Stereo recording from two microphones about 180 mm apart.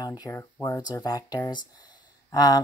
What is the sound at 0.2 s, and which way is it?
Speech, 15° left (ahead or behind).